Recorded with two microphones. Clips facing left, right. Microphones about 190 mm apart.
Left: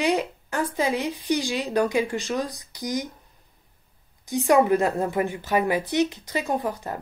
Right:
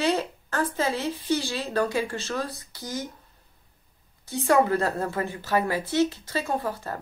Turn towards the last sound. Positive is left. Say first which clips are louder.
# left 2 dB
turn(degrees=15)  # may be behind; listen again after turning